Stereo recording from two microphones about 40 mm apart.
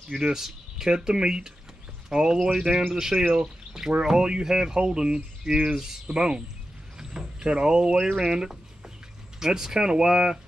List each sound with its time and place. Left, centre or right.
0.1 s speech: centre